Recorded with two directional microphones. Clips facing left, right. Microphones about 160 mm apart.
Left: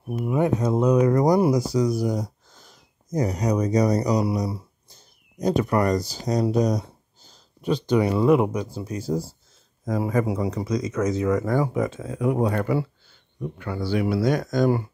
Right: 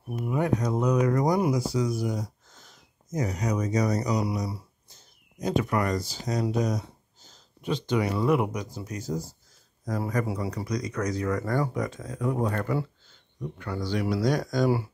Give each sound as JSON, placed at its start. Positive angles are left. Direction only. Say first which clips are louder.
{"t": 0.3, "sound": "speech", "louder": "left 4 dB", "side_deg": 25}
{"t": 12.0, "sound": "speech", "louder": "left 4 dB", "side_deg": 10}